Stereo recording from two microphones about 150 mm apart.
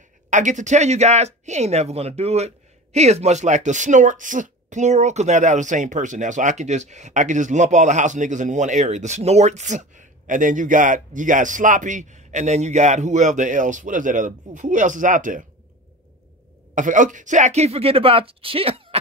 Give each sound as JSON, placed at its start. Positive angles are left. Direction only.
{"t": 0.3, "sound": "speech", "side_deg": -55}
{"t": 16.7, "sound": "speech", "side_deg": -60}